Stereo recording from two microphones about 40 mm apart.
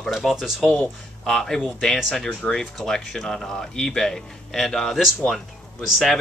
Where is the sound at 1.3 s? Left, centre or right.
Centre.